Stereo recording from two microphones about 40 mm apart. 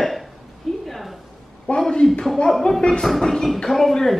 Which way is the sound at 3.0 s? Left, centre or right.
Centre.